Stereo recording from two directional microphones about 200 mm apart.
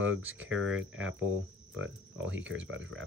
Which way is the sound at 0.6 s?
5° right (ahead or behind).